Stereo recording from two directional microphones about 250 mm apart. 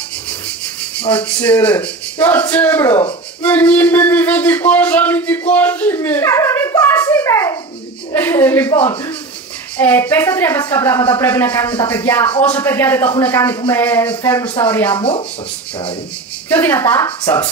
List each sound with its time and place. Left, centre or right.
1.1 s speech: centre
15.0 s speech: left
16.4 s speech: centre